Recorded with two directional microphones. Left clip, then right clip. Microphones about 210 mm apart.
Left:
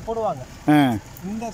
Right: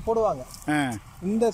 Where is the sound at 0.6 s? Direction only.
20° left (ahead or behind).